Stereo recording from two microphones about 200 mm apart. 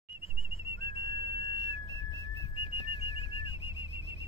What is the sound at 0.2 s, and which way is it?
Whistle, 30° left (ahead or behind).